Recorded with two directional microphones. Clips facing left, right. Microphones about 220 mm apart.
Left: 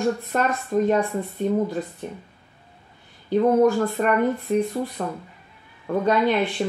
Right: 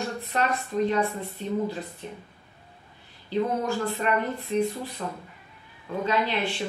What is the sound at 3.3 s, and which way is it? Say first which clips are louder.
Speech: left 9 dB; 50° left (ahead or behind).